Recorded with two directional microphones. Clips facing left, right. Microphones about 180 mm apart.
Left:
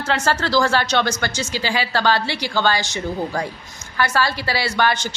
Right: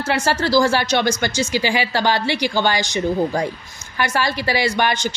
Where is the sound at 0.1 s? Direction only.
10° right (ahead or behind).